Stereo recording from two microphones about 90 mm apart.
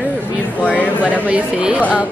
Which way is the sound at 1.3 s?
10° right (ahead or behind).